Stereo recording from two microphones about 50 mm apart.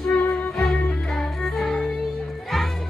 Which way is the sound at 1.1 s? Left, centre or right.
Centre.